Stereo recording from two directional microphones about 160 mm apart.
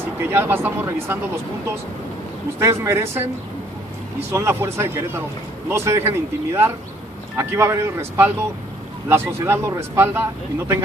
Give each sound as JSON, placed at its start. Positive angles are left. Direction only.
{"t": 0.3, "sound": "speech", "side_deg": -15}
{"t": 2.6, "sound": "speech", "side_deg": -15}
{"t": 4.3, "sound": "speech", "side_deg": -15}